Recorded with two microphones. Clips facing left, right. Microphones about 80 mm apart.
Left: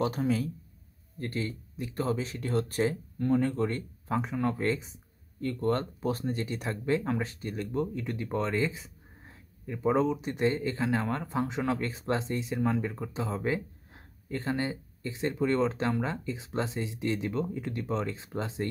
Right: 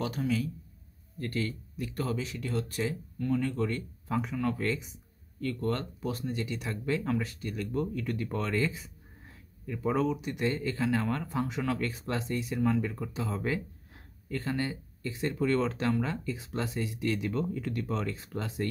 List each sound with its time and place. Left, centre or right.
0.0 s speech: left
1.2 s speech: left